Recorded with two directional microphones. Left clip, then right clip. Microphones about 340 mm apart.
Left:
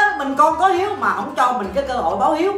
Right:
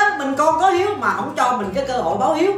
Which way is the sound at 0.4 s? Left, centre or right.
Centre.